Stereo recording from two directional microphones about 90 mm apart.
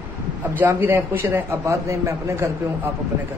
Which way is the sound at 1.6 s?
35° right (ahead or behind).